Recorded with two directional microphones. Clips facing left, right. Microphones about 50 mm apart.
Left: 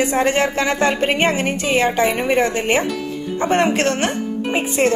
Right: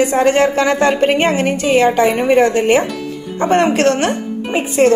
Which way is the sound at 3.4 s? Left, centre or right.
Right.